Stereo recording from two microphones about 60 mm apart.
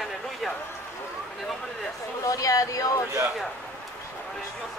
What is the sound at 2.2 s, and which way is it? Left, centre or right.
Speech, left.